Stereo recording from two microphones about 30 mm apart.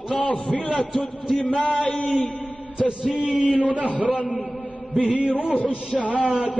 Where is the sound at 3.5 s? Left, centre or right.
Right.